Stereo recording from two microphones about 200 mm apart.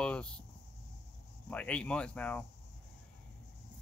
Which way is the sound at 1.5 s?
5° left (ahead or behind).